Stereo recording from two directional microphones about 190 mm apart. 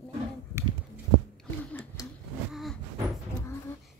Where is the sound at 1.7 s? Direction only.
15° left (ahead or behind).